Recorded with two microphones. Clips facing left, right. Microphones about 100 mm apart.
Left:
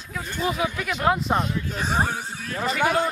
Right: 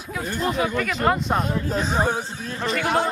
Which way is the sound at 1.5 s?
40° right (ahead or behind).